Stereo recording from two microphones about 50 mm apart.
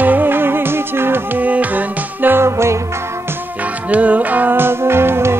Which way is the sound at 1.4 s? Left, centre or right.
Right.